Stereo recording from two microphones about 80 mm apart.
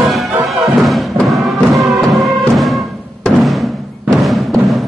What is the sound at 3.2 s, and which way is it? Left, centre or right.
Music, centre.